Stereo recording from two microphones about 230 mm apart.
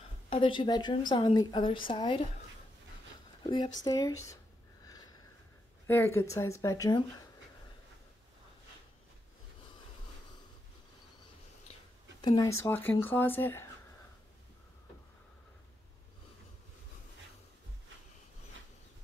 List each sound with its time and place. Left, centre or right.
0.0 s a woman's voice: left
3.4 s a woman's voice: centre
4.8 s sniff: centre
5.9 s a woman's voice: centre
12.2 s a woman's voice: centre